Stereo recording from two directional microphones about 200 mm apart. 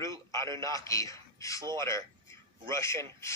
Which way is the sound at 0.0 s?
15° left (ahead or behind).